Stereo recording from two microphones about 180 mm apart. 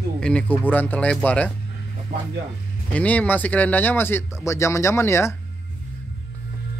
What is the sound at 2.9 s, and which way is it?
Speech, 10° left (ahead or behind).